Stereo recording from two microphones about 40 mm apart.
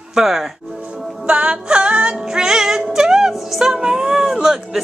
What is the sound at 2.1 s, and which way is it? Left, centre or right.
Music, centre.